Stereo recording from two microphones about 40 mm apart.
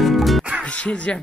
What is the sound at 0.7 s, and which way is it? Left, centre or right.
Music, left.